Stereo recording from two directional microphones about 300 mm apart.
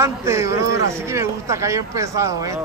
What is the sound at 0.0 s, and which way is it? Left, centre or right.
Speech, centre.